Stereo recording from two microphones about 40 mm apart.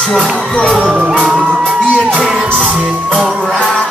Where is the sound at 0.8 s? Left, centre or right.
Centre.